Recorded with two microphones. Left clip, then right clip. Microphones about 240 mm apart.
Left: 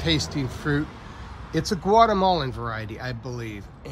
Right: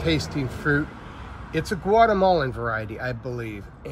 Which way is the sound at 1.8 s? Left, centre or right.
Centre.